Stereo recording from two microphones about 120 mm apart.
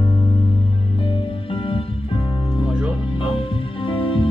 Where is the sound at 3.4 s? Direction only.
50° left (ahead or behind).